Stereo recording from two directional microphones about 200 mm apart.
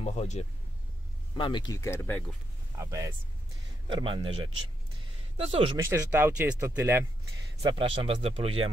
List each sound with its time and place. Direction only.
0.0 s speech: 35° left (ahead or behind)
1.3 s speech: 20° left (ahead or behind)
2.8 s speech: 15° right (ahead or behind)
5.5 s speech: 25° right (ahead or behind)
5.8 s speech: 10° right (ahead or behind)
7.6 s speech: 25° right (ahead or behind)